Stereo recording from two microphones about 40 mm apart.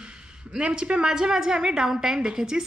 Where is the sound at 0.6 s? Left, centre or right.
Right.